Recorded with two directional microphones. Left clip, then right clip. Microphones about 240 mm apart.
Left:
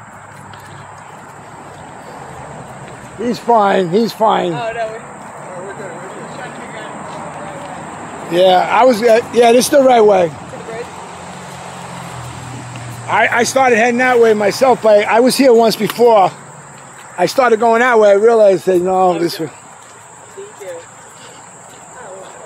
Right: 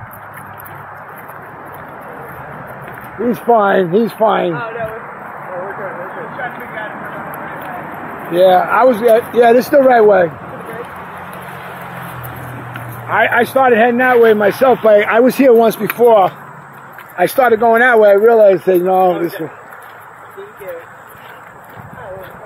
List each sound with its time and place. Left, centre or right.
3.4 s speech: centre
8.3 s speech: centre
13.1 s speech: centre
13.4 s speech: centre
15.8 s speech: centre
17.6 s speech: centre
17.8 s speech: centre
18.1 s speech: centre